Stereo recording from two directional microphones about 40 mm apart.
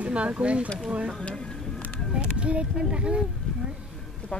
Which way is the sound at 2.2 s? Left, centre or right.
Right.